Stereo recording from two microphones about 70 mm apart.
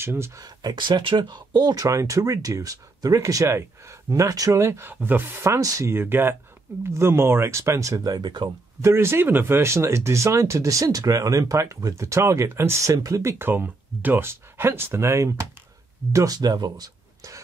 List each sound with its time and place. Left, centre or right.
0.0 s speech: right
0.4 s speech: right
1.9 s speech: right
4.6 s speech: right
5.6 s speech: right
5.9 s speech: right
8.8 s speech: right
12.8 s speech: right
13.4 s speech: right
16.3 s speech: right